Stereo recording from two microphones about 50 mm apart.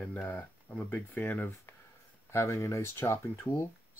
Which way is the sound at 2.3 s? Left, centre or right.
Left.